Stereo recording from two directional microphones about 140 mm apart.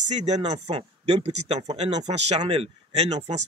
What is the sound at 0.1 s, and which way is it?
A woman's voice, 55° right (ahead or behind).